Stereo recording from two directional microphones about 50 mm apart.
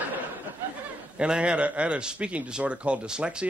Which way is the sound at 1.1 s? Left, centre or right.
Right.